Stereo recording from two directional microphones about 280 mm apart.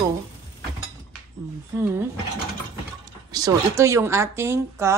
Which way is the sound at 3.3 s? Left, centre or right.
Centre.